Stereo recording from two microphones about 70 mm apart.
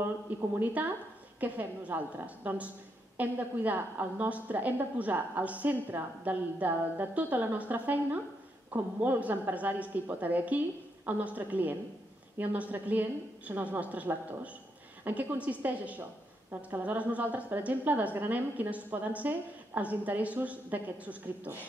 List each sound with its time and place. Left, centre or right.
0.6 s a woman's voice: right